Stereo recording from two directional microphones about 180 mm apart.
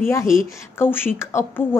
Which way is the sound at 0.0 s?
15° left (ahead or behind).